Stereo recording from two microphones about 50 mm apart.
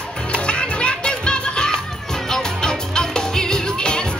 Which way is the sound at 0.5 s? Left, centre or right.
Left.